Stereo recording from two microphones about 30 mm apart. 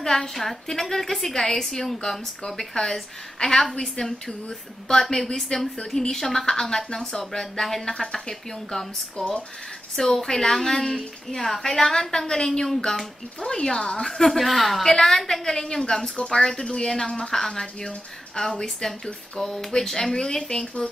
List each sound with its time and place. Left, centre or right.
0.0 s a woman's voice: centre
4.5 s a woman's voice: centre
6.4 s a woman's voice: left
11.8 s speech: left
14.1 s a woman's voice: centre
14.9 s a woman's voice: centre
18.4 s a woman's voice: centre